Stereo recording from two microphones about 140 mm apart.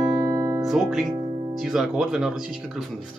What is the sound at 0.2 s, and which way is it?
Music, 25° right (ahead or behind).